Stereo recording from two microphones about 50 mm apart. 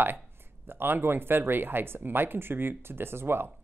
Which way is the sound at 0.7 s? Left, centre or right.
Right.